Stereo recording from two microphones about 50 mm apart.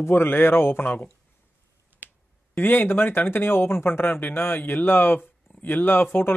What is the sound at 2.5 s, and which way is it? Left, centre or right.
Speech, left.